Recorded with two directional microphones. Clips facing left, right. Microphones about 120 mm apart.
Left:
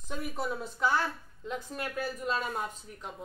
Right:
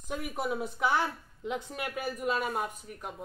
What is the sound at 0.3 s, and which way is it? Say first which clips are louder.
Speech: right 3 dB; 15° right (ahead or behind).